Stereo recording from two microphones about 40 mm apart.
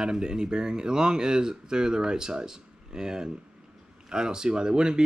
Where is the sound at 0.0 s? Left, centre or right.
Centre.